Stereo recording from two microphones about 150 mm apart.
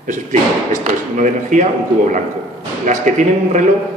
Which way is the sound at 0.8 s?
55° right (ahead or behind).